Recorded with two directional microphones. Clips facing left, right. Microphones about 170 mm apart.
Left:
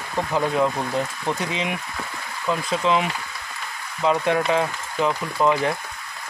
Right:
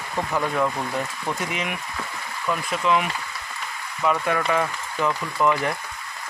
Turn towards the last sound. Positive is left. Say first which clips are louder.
# left 2 dB
turn(degrees=20)  # may be behind; listen again after turning